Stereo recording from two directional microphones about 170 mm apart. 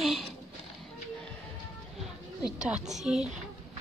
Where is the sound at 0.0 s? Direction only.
Centre (ahead or behind).